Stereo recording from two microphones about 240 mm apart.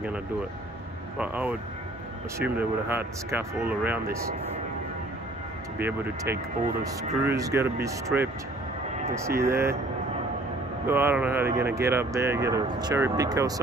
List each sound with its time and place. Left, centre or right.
1.1 s speech: centre
5.8 s speech: centre
9.4 s speech: centre
10.9 s speech: centre